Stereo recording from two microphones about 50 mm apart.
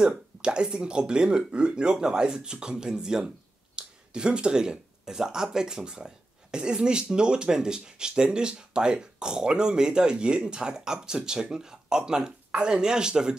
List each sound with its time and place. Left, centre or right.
0.0 s speech: centre